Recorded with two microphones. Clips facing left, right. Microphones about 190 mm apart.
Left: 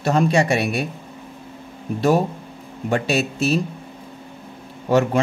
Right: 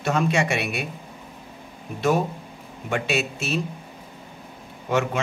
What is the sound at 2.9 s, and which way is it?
Speech, 35° left (ahead or behind).